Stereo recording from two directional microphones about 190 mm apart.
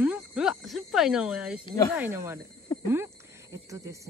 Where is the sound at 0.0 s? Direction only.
5° right (ahead or behind).